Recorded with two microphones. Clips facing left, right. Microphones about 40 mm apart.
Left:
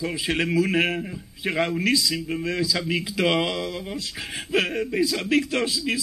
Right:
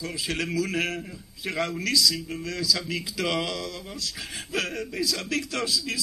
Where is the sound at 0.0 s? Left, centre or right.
Left.